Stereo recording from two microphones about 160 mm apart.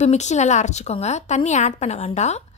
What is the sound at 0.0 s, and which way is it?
Speech, 45° left (ahead or behind).